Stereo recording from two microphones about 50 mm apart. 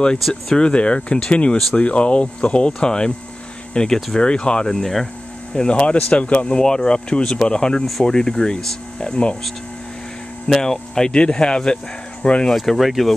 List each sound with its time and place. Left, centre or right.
0.3 s speech: centre
5.5 s speech: left
10.5 s speech: centre
12.4 s speech: centre